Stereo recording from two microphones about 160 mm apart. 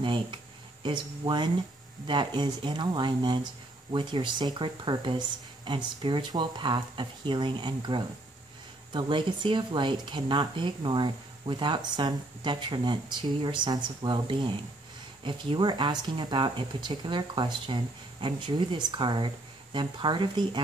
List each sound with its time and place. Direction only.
0.0 s speech: 30° right (ahead or behind)